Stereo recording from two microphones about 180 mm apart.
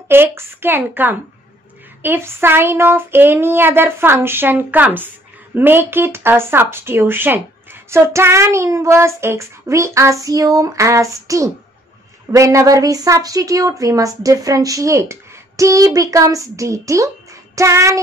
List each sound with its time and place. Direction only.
0.1 s speech: 10° right (ahead or behind)